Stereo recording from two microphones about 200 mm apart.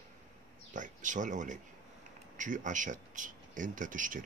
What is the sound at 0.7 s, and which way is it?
Speech, 40° right (ahead or behind).